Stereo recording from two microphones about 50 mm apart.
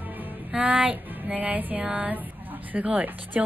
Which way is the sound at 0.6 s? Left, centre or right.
Right.